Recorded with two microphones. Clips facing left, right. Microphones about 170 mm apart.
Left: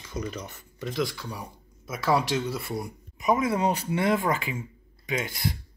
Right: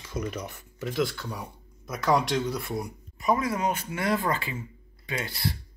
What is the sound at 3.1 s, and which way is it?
Speech, 20° left (ahead or behind).